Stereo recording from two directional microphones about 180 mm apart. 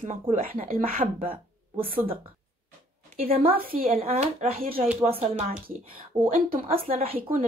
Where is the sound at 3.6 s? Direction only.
55° right (ahead or behind).